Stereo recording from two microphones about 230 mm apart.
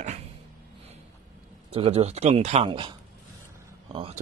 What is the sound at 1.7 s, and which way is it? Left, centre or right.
Speech, right.